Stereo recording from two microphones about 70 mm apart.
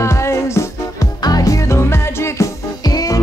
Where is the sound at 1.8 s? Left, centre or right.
Left.